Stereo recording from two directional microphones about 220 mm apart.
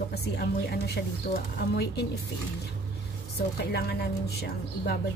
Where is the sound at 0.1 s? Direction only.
45° left (ahead or behind).